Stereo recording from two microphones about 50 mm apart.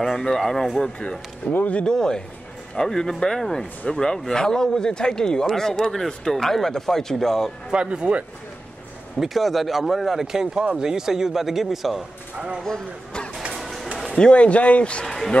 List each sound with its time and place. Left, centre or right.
0.0 s a man's voice: centre
1.5 s speech: left
1.8 s a man's voice: centre
7.7 s speech: centre
9.2 s speech: centre
12.6 s speech: centre
13.5 s a sound: centre
14.1 s a man's voice: left
15.0 s speech: centre